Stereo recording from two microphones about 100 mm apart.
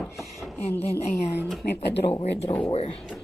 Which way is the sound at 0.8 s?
90° left.